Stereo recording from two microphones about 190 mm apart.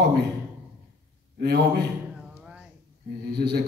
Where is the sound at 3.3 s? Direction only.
55° right (ahead or behind).